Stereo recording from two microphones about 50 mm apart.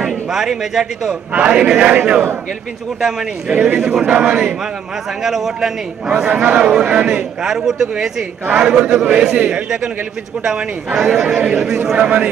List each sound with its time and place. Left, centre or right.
0.3 s speech: centre
1.3 s a man's voice: right
3.0 s a man's voice: centre
5.2 s speech: centre
6.0 s a man's voice: right
7.4 s a man's voice: centre